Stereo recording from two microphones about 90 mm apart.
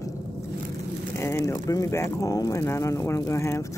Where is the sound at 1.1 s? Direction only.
30° left (ahead or behind).